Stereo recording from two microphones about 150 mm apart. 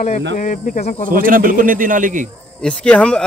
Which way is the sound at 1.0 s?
65° right (ahead or behind).